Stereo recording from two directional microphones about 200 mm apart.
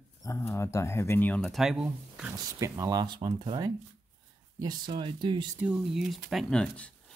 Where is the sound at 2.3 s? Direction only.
15° right (ahead or behind).